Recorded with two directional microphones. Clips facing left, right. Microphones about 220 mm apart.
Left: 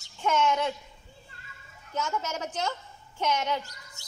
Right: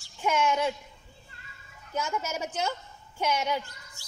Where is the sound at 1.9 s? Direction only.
10° right (ahead or behind).